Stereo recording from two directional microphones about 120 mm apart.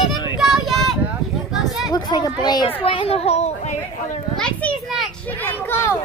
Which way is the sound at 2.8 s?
50° left (ahead or behind).